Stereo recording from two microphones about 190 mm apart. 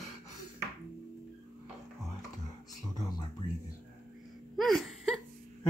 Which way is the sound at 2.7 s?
20° left (ahead or behind).